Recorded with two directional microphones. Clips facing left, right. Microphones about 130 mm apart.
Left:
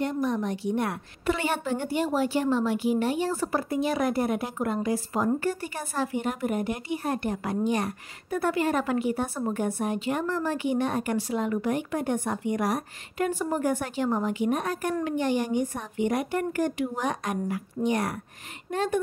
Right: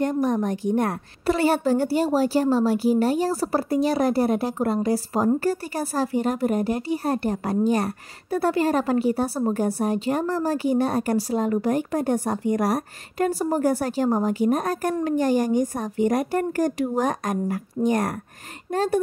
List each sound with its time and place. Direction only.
0.0 s a woman's voice: 45° right (ahead or behind)